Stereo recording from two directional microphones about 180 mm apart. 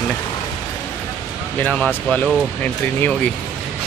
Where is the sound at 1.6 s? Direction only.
5° left (ahead or behind).